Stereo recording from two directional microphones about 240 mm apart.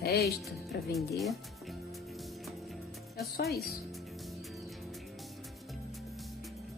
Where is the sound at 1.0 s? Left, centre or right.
Centre.